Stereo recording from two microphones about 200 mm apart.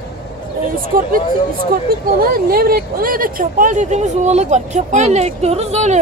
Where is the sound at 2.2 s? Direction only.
50° right (ahead or behind).